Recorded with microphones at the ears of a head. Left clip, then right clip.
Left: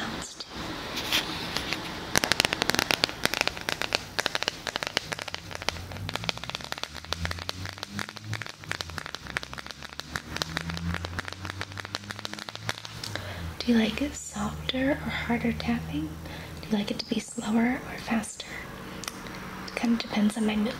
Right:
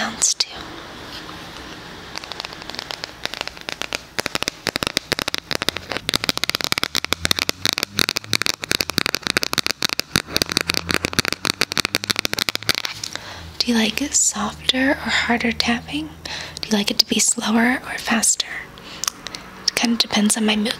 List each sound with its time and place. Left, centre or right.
0.0 s whispering: right
2.1 s fireworks: left
4.3 s a sound: right
16.6 s speech: right